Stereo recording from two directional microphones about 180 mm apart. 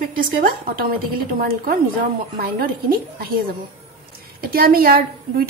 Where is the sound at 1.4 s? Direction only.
55° right (ahead or behind).